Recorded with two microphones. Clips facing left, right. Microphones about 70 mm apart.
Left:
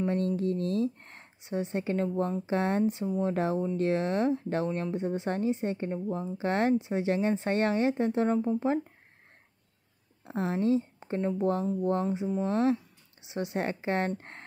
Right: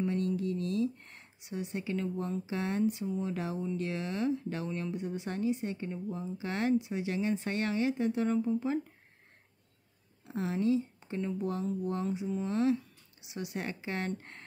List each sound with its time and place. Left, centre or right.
0.0 s a sound: left
2.4 s speech: left
10.2 s speech: left